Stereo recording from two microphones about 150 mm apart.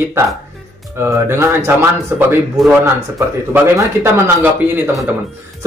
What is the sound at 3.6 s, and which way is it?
Speech, 15° right (ahead or behind).